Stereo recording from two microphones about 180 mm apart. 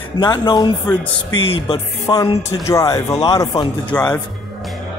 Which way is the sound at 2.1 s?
20° left (ahead or behind).